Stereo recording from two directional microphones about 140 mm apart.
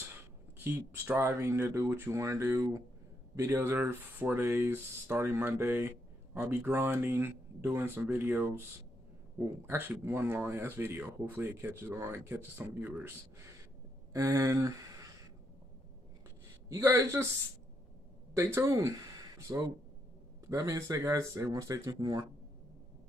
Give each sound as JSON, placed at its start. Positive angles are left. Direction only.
{"t": 0.7, "sound": "speech", "side_deg": -15}
{"t": 9.7, "sound": "speech", "side_deg": -15}
{"t": 14.1, "sound": "speech", "side_deg": -20}
{"t": 16.6, "sound": "speech", "side_deg": -20}
{"t": 18.3, "sound": "speech", "side_deg": -20}